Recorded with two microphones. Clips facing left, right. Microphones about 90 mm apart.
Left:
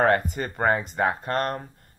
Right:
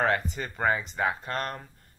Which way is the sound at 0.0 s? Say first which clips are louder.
Left 5 dB; 45° left (ahead or behind).